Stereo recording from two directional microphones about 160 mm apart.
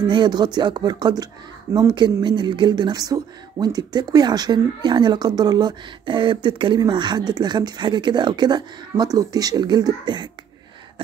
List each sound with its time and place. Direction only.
0.0 s speech: 30° right (ahead or behind)